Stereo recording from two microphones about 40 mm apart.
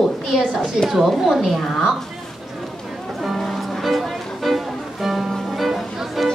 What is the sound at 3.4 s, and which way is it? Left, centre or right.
Music, centre.